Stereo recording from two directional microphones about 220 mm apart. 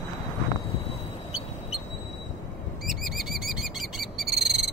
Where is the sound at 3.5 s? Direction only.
Centre (ahead or behind).